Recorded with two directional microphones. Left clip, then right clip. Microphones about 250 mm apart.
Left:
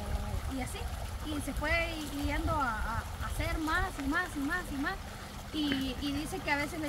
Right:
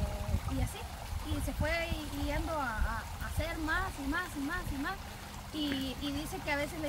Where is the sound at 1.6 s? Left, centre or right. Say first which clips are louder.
Left 3 dB; centre.